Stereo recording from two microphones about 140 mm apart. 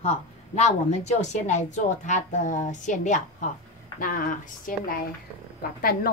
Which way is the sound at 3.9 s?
85° left.